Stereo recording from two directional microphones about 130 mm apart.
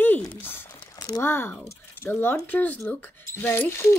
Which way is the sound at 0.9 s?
25° left (ahead or behind).